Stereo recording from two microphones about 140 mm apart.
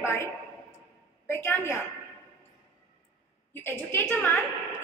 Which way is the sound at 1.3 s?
15° left (ahead or behind).